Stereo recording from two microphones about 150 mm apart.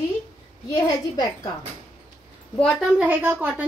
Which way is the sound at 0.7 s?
25° left (ahead or behind).